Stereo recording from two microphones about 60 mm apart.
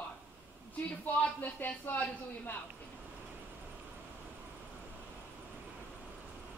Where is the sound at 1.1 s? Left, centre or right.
Left.